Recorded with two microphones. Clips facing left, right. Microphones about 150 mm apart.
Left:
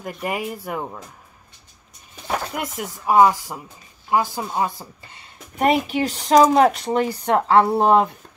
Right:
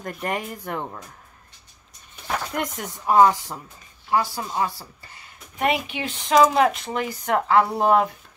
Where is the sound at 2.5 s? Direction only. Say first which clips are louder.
Even; 5° left (ahead or behind); by 5.3 s 20° left (ahead or behind).